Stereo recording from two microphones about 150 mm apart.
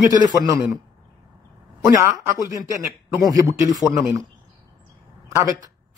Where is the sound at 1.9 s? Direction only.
20° right (ahead or behind).